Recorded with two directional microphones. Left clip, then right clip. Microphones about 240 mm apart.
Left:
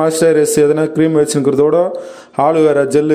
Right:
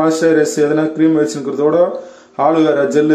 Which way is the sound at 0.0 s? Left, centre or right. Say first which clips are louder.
Left 1 dB; left.